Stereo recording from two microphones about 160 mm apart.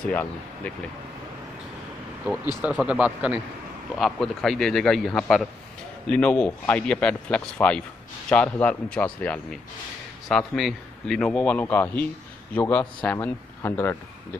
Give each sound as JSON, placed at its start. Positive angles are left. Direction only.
{"t": 0.0, "sound": "a man's voice", "side_deg": 10}
{"t": 2.6, "sound": "a man's voice", "side_deg": -5}